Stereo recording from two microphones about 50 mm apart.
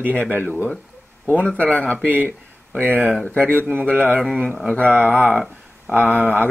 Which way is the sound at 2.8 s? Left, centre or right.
Right.